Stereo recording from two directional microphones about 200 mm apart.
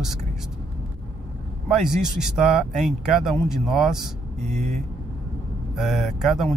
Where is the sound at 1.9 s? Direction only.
Centre (ahead or behind).